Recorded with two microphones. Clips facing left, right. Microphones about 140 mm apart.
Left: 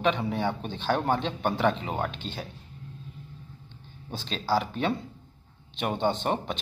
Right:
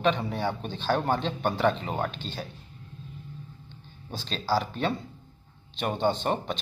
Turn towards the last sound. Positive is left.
turn(degrees=20)  # may be behind; listen again after turning